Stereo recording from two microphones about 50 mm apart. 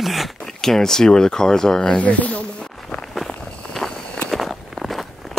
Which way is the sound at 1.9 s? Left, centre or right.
Left.